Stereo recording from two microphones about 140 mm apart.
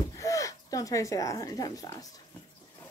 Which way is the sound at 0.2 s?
25° left (ahead or behind).